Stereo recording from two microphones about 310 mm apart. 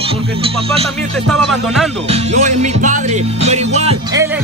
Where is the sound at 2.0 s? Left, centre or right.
Right.